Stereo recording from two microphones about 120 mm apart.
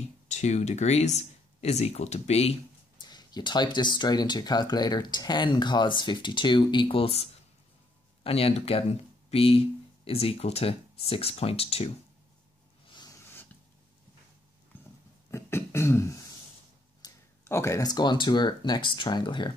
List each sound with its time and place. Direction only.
0.3 s speech: 70° left (ahead or behind)
3.0 s speech: 35° left (ahead or behind); by 11.9 s 55° left (ahead or behind)
15.3 s beatboxing: 20° left (ahead or behind)
17.0 s a sound: 35° left (ahead or behind)
17.5 s speech: 25° left (ahead or behind); by 19.5 s 40° left (ahead or behind)